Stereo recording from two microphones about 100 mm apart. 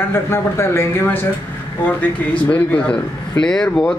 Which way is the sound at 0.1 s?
25° left (ahead or behind).